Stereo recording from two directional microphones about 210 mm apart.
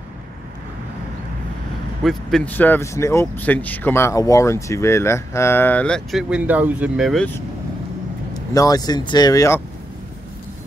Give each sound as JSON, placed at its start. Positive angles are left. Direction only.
{"t": 2.0, "sound": "speech", "side_deg": 5}
{"t": 8.5, "sound": "speech", "side_deg": 15}